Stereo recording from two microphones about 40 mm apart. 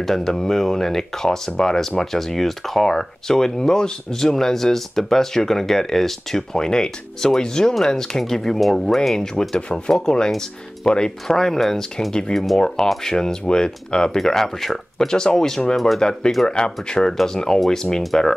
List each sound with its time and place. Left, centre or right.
0.0 s speech: centre
12.1 s speech: centre
16.0 s speech: centre